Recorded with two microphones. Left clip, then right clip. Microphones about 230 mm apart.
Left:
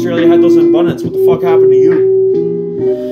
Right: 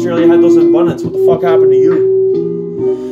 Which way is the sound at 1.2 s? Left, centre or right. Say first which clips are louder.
Even; centre.